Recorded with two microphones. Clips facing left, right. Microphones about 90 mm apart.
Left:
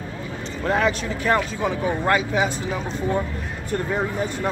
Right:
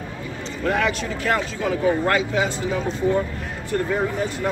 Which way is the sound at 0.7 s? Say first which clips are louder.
Left 1 dB; 25° left (ahead or behind).